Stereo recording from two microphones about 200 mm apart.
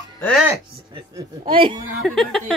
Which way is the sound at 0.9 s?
25° right (ahead or behind).